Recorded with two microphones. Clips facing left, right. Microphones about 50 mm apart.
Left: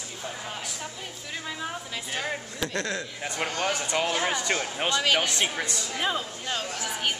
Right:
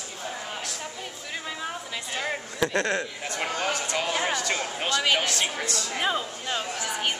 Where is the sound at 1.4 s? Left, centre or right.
Centre.